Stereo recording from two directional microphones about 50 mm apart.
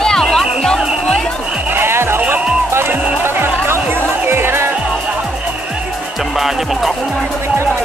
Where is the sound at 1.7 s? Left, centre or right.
Right.